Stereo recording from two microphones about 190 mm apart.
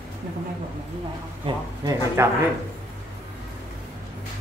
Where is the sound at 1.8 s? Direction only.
15° right (ahead or behind).